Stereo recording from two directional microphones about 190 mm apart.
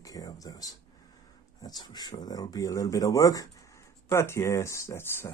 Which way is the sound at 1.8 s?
20° left (ahead or behind).